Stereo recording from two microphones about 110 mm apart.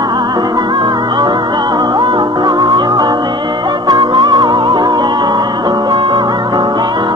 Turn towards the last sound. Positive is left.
turn(degrees=-45)  # may be behind; listen again after turning